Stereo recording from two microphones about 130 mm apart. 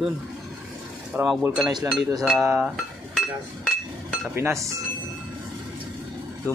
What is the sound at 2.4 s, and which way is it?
Speech, 10° right (ahead or behind).